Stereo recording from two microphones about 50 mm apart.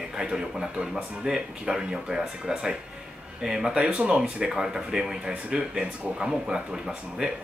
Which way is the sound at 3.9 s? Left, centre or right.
Right.